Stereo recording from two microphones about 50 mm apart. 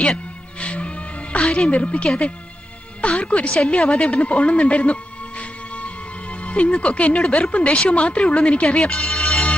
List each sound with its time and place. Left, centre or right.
0.6 s music: left
1.7 s speech: left
6.4 s music: left
6.8 s speech: left
8.9 s music: centre